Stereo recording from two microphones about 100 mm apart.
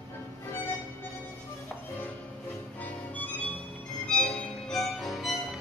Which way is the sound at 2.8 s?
15° left (ahead or behind).